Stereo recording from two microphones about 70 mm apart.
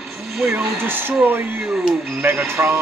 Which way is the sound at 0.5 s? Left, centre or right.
Right.